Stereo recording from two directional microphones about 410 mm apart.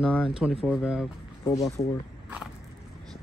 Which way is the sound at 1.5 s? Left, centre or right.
Centre.